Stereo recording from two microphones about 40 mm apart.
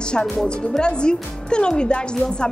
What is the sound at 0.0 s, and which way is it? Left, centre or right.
Speech, left.